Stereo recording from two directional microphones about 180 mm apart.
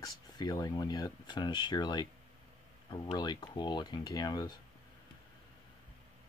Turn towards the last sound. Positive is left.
turn(degrees=20)  # may be behind; listen again after turning